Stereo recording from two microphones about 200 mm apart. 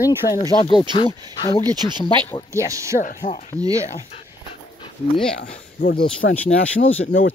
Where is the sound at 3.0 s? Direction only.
45° left (ahead or behind).